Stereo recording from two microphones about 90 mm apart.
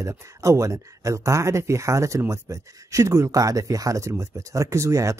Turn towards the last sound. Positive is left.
turn(degrees=-35)  # may be behind; listen again after turning